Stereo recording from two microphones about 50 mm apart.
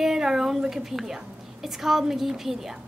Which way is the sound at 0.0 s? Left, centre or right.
Centre.